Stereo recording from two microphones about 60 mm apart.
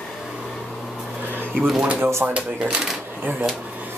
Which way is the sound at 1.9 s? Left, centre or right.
Right.